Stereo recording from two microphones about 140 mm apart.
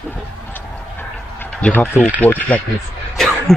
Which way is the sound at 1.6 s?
10° left (ahead or behind).